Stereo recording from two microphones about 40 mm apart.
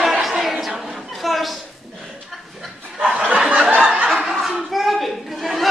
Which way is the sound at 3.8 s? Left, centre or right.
Right.